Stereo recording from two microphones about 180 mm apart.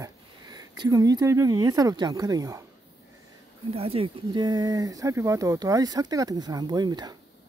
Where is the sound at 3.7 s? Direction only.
35° right (ahead or behind).